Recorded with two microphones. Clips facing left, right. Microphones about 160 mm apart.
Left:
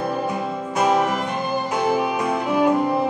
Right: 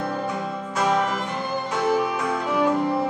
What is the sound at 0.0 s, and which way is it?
Music, 20° left (ahead or behind).